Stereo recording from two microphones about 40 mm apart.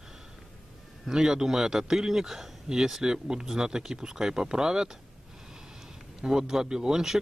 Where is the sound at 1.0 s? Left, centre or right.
Centre.